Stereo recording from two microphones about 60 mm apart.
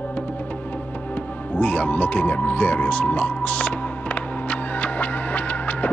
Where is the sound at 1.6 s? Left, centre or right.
Left.